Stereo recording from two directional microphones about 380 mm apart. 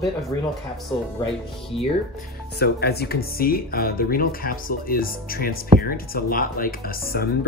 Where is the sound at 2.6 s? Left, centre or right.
Left.